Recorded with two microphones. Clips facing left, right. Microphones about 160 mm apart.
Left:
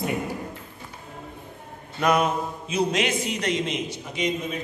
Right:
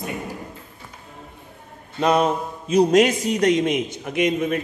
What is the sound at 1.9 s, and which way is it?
A man's voice, 30° right (ahead or behind).